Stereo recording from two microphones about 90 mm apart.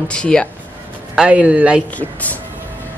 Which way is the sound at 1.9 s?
15° left (ahead or behind).